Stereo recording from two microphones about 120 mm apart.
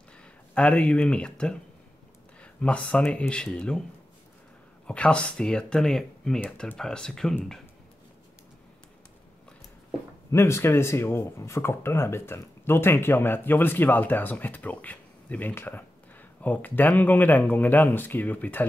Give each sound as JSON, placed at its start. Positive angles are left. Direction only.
{"t": 0.2, "sound": "speech", "side_deg": 10}
{"t": 4.8, "sound": "speech", "side_deg": 10}
{"t": 10.3, "sound": "speech", "side_deg": 20}